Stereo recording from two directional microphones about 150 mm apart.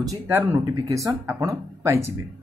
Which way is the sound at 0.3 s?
15° right (ahead or behind).